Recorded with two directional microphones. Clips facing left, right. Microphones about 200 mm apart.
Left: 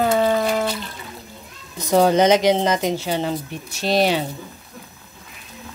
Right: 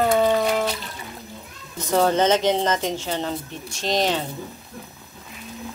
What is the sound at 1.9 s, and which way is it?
Speech, 15° left (ahead or behind).